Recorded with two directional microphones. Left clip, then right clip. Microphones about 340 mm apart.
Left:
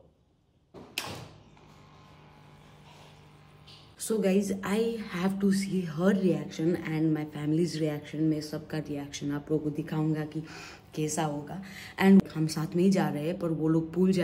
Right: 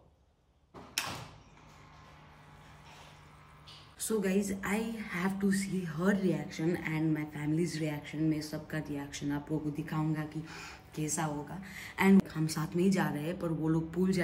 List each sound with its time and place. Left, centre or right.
4.1 s a woman's voice: centre